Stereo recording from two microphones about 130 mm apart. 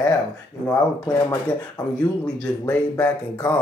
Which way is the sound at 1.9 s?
10° left (ahead or behind).